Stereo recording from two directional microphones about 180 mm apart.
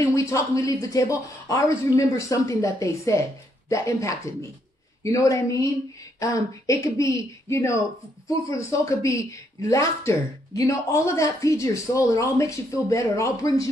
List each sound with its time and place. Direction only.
0.0 s speech: 15° left (ahead or behind)